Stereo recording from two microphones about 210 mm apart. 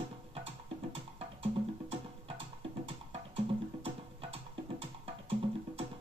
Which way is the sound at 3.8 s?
25° right (ahead or behind).